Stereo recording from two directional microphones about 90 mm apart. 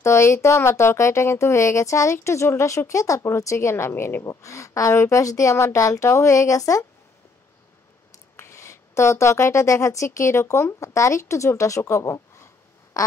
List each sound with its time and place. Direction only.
0.0 s speech: 30° left (ahead or behind)
4.2 s speech: 35° left (ahead or behind)
8.4 s speech: 30° left (ahead or behind)